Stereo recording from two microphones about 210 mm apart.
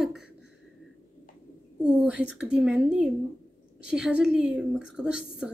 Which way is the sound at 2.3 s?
5° right (ahead or behind).